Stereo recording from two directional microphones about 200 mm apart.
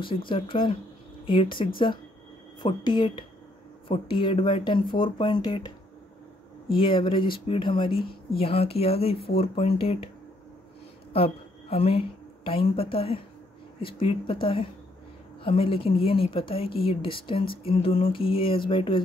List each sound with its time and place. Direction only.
0.3 s a woman's voice: 25° left (ahead or behind)
6.7 s a woman's voice: 25° left (ahead or behind)
11.1 s a woman's voice: 30° left (ahead or behind)